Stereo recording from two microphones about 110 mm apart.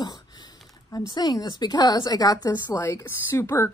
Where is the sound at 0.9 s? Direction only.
40° left (ahead or behind).